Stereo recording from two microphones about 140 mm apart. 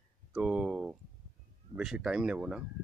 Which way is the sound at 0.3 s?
5° right (ahead or behind).